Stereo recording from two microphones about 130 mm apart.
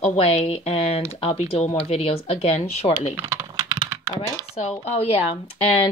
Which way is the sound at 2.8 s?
25° left (ahead or behind).